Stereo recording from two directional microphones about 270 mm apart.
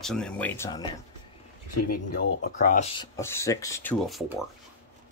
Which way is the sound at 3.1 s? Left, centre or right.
Centre.